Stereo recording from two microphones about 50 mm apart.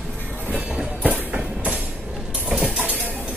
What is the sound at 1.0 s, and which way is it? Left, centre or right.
Train, right.